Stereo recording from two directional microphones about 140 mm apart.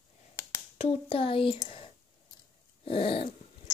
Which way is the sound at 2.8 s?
40° left (ahead or behind).